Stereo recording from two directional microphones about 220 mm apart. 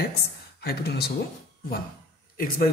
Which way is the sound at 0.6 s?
45° left (ahead or behind).